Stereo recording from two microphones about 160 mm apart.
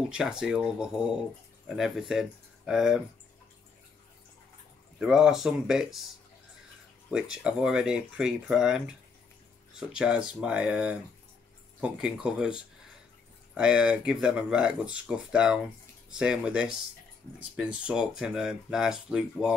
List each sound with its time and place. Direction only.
0.1 s speech: 5° right (ahead or behind)
4.9 s speech: 5° right (ahead or behind)
7.1 s speech: 5° right (ahead or behind)
13.6 s speech: 5° right (ahead or behind)